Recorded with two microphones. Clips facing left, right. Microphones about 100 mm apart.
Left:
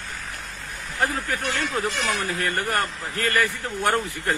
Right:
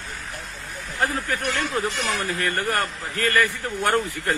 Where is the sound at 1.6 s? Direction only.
20° right (ahead or behind).